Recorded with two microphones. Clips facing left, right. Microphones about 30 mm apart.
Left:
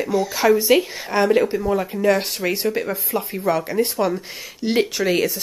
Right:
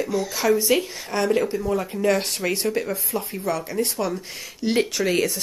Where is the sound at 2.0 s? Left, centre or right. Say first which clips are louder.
Left 2 dB; centre.